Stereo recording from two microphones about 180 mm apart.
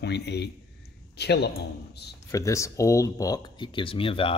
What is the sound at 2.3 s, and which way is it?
Speech, 15° left (ahead or behind).